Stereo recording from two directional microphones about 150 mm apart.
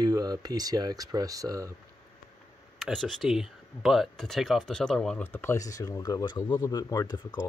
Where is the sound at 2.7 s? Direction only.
Centre (ahead or behind); by 7.5 s 30° left (ahead or behind).